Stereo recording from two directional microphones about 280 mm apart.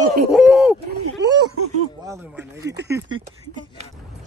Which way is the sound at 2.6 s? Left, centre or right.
Right.